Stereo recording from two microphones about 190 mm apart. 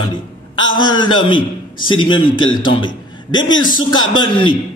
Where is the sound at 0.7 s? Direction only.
25° left (ahead or behind).